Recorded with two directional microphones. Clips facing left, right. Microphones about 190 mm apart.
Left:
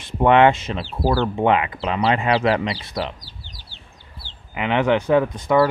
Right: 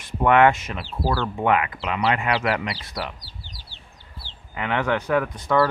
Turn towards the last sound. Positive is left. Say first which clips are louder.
# left 4 dB
turn(degrees=20)  # may be behind; listen again after turning